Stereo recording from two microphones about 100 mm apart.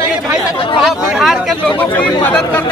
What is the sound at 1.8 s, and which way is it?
Speech, 15° left (ahead or behind).